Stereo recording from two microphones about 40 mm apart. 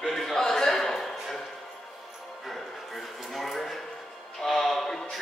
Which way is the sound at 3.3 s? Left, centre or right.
Centre.